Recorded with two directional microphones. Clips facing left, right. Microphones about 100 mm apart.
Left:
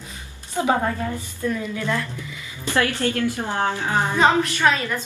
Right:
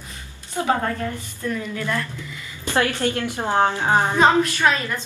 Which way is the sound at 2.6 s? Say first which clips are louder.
Right 1 dB; 20° right (ahead or behind).